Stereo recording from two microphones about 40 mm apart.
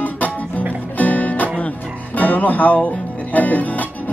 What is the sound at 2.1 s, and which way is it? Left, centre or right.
Speech, left.